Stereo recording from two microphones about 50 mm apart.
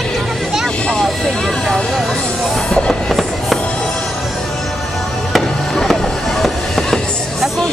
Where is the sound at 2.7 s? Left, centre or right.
Centre.